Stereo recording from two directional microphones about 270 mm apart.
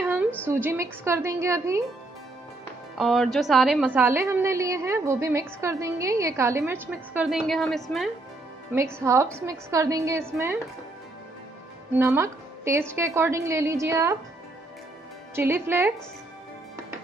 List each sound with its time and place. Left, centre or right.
0.0 s a sound: centre
0.5 s a woman's voice: centre
3.0 s a woman's voice: centre
9.0 s a woman's voice: centre
11.9 s a woman's voice: centre
15.3 s a woman's voice: centre